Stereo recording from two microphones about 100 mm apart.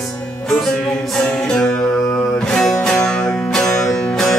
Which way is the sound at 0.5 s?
Centre (ahead or behind).